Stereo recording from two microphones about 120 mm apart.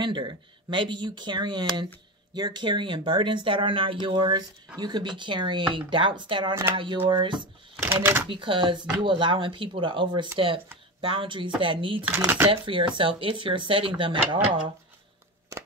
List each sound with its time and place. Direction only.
0.0 s speech: 40° right (ahead or behind)
7.8 s speech: 20° right (ahead or behind)
8.3 s speech: 45° right (ahead or behind)